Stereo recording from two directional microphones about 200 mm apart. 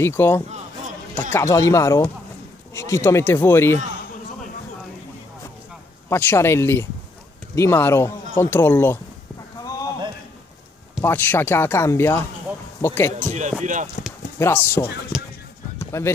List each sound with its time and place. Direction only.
0.0 s speech: 10° left (ahead or behind)
6.0 s speech: 10° left (ahead or behind)
9.6 s a sound: 20° left (ahead or behind)
11.0 s speech: 10° left (ahead or behind)
13.3 s speech: 40° right (ahead or behind)
14.4 s speech: 10° left (ahead or behind)
15.1 s speech: centre (ahead or behind)
15.8 s run: 15° left (ahead or behind)